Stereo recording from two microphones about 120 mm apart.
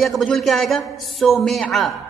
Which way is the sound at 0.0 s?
Centre (ahead or behind).